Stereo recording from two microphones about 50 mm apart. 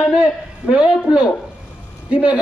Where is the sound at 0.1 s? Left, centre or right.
Centre.